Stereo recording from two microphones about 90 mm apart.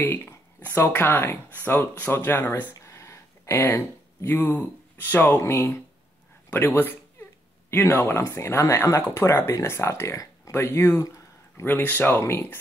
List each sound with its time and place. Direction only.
0.0 s speech: 20° left (ahead or behind)
2.7 s a sound: 35° left (ahead or behind)
4.3 s speech: 20° left (ahead or behind)
5.4 s speech: 30° left (ahead or behind)
11.0 s a sound: 35° left (ahead or behind)
11.6 s speech: 20° left (ahead or behind)